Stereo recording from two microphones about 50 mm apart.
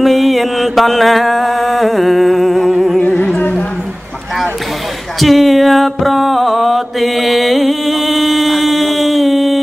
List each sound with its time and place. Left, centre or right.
0.0 s mantra: centre
3.1 s music: centre
3.3 s a sound: left
5.2 s mantra: centre